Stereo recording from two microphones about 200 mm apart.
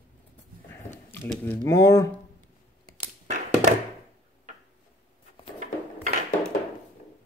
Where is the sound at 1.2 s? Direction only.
10° left (ahead or behind).